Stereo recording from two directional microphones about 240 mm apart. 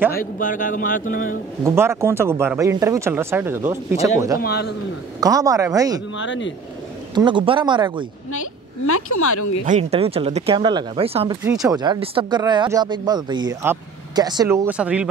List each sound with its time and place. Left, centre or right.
0.1 s speech: left
1.6 s speech: centre
4.4 s speech: left
5.2 s speech: centre
6.1 s speech: left
7.2 s speech: centre
8.8 s a woman's voice: left
9.7 s speech: right; by 15.0 s centre